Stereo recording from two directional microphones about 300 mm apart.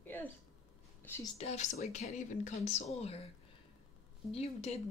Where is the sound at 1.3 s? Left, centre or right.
Left.